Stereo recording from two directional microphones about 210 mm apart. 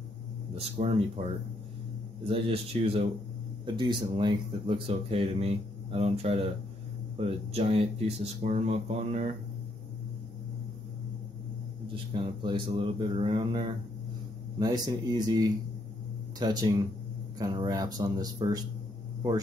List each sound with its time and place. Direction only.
0.6 s speech: 30° right (ahead or behind)
11.9 s speech: 25° right (ahead or behind)